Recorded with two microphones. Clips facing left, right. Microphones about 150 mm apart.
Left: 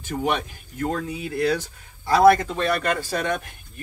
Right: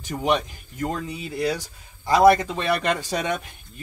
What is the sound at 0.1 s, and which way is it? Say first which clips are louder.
Speech: right 2 dB; 15° right (ahead or behind).